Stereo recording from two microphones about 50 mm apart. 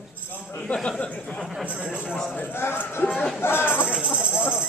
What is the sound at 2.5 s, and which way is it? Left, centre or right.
Music, left.